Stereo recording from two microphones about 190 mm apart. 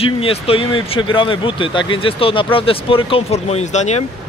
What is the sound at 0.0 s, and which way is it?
Speech, 30° left (ahead or behind).